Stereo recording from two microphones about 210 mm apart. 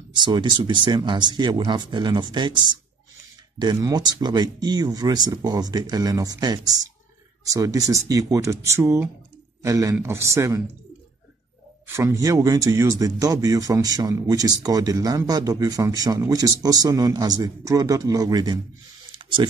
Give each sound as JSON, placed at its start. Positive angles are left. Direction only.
{"t": 0.1, "sound": "speech", "side_deg": -20}
{"t": 11.9, "sound": "speech", "side_deg": -15}
{"t": 19.1, "sound": "a sound", "side_deg": -25}